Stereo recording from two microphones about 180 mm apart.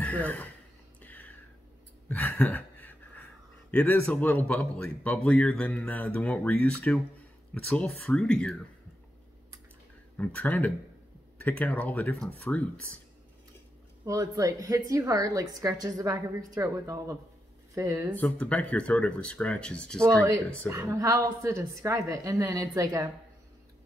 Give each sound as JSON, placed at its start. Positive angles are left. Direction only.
{"t": 0.0, "sound": "speech", "side_deg": 10}
{"t": 2.0, "sound": "a sound", "side_deg": 10}
{"t": 3.7, "sound": "speech", "side_deg": 10}
{"t": 10.1, "sound": "speech", "side_deg": 10}
{"t": 14.0, "sound": "a woman's voice", "side_deg": -20}
{"t": 18.1, "sound": "speech", "side_deg": 10}
{"t": 20.6, "sound": "a woman's voice", "side_deg": -15}